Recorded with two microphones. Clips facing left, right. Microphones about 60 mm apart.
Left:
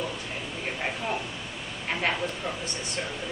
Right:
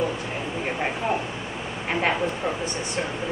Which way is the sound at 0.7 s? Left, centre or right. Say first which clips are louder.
Right 4 dB; centre.